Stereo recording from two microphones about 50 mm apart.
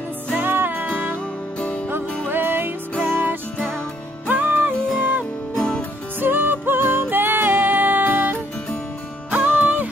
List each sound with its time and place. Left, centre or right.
0.3 s music: right
2.3 s music: right
5.6 s music: left
6.1 s music: right